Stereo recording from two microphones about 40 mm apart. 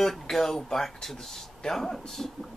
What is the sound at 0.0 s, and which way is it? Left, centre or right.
Speech, centre.